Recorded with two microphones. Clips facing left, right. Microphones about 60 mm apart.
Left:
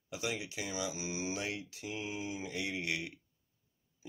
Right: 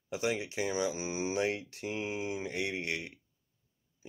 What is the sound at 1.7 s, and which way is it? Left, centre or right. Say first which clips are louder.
Mantra: right 4 dB; right.